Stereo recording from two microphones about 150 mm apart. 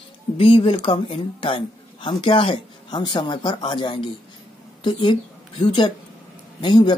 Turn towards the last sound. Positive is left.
turn(degrees=30)  # may be behind; listen again after turning